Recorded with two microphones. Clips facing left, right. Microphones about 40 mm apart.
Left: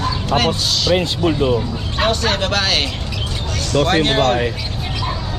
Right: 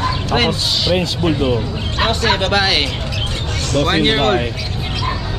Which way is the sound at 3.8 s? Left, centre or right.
Right.